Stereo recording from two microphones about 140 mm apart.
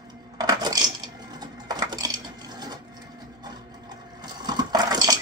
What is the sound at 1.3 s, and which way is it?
Coin, 30° right (ahead or behind).